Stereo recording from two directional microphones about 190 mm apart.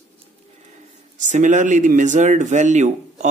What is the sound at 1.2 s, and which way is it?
Speech, 40° right (ahead or behind).